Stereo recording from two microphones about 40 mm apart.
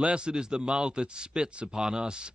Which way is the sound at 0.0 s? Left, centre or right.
Right.